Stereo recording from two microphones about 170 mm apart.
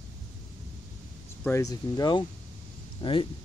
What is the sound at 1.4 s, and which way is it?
Speech, 20° left (ahead or behind).